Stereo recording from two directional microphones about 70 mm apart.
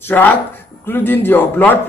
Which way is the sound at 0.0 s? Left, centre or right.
Left.